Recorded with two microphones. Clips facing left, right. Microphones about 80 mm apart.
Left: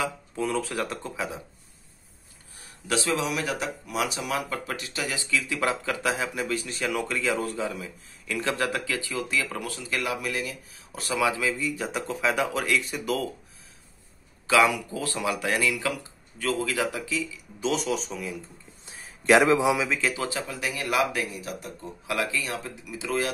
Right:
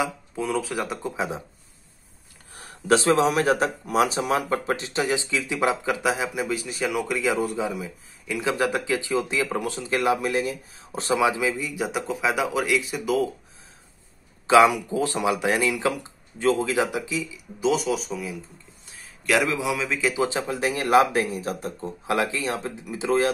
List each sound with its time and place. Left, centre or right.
0.4 s speech: centre
1.1 s speech: right
2.9 s speech: right; by 13.3 s centre
14.5 s speech: right
17.6 s speech: centre
19.2 s a man's voice: left
20.0 s speech: centre
20.2 s speech: right